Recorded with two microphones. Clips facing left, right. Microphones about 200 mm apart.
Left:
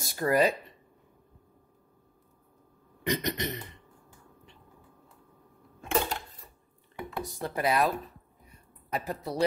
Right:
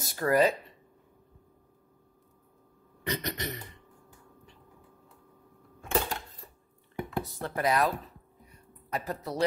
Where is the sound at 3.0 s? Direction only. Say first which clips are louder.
Left 4 dB; 20° left (ahead or behind).